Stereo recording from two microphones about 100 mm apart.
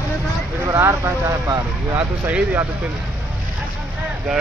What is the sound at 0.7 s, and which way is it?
Speech, 30° right (ahead or behind).